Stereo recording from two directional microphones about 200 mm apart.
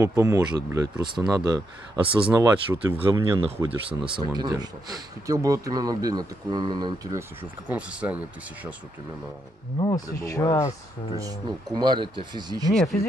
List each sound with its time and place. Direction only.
0.0 s speech: 15° right (ahead or behind)
2.0 s speech: 5° right (ahead or behind)
2.3 s speech: 15° right (ahead or behind)
3.3 s speech: 30° right (ahead or behind); by 8.2 s 5° right (ahead or behind)
9.8 s speech: 20° left (ahead or behind)
11.1 s speech: 20° right (ahead or behind)